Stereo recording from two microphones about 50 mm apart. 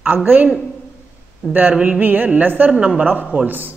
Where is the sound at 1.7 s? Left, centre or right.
Centre.